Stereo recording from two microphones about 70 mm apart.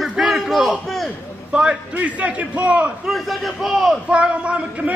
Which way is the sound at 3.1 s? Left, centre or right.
Centre.